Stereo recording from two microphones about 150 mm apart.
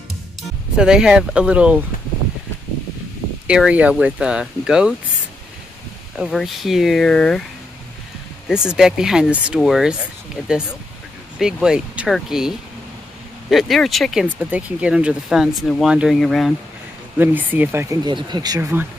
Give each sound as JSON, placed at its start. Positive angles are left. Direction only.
{"t": 0.7, "sound": "speech", "side_deg": -5}
{"t": 3.4, "sound": "speech", "side_deg": -5}
{"t": 6.1, "sound": "speech", "side_deg": 0}
{"t": 8.7, "sound": "speech", "side_deg": -5}
{"t": 17.2, "sound": "speech", "side_deg": -10}
{"t": 18.0, "sound": "speech", "side_deg": -30}
{"t": 18.6, "sound": "speech", "side_deg": -15}